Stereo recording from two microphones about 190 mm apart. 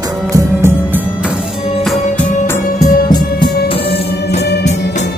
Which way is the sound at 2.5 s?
15° left (ahead or behind).